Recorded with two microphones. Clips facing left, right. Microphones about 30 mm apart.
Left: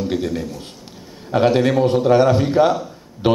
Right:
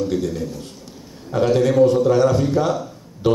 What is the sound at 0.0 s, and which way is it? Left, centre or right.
A man's voice, left.